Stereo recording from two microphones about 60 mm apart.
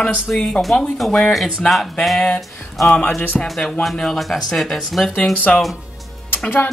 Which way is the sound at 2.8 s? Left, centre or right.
Left.